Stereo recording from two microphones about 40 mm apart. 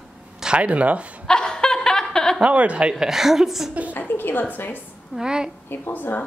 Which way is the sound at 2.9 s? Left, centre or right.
Centre.